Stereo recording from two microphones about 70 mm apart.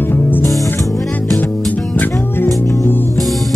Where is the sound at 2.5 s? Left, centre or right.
Left.